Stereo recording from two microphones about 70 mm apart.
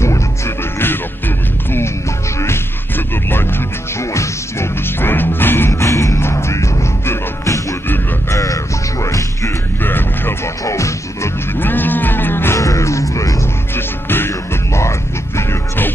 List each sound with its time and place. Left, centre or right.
2.3 s music: left
5.7 s music: left
9.8 s a sound: left
10.6 s music: left
11.6 s music: left
12.5 s music: left
13.7 s music: left